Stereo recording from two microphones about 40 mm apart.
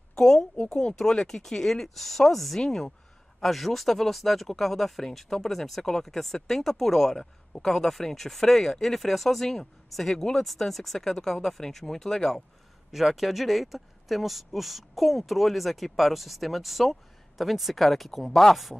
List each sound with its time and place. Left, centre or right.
0.1 s a sound: centre
0.7 s speech: centre
2.6 s speech: centre
3.3 s speech: centre
10.1 s speech: centre
10.4 s speech: centre
12.9 s speech: centre